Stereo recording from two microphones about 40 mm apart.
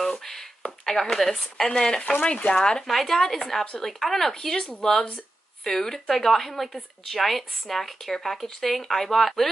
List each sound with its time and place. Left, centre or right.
0.2 s a sound: centre
0.8 s speech: centre
2.9 s a woman's voice: centre